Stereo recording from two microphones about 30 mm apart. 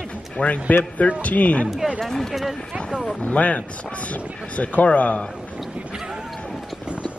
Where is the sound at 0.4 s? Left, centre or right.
Left.